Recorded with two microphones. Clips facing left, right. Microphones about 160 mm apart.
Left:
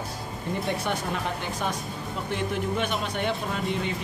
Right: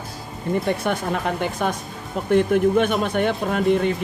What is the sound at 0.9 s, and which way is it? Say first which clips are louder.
Speech: right 6 dB; 55° right (ahead or behind).